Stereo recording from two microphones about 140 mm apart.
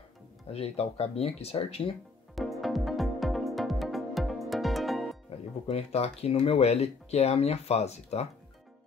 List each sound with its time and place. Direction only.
0.5 s speech: 45° left (ahead or behind)
2.3 s music: centre (ahead or behind)
5.7 s speech: 50° left (ahead or behind)